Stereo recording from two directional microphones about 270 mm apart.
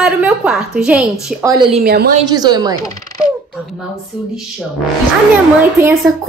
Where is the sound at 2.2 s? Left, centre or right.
Centre.